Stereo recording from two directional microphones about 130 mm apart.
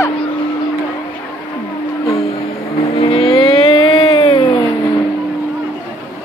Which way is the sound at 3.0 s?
45° left (ahead or behind).